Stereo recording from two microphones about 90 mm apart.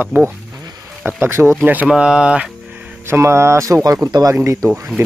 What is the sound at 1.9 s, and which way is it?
Speech, 10° right (ahead or behind).